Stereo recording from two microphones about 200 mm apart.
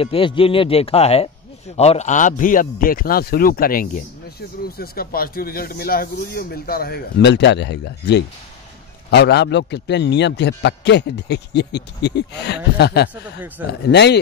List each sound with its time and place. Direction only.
0.0 s a man's voice: 25° left (ahead or behind); by 13.1 s 55° left (ahead or behind)
13.1 s speech: 10° right (ahead or behind)
13.8 s a man's voice: 55° left (ahead or behind)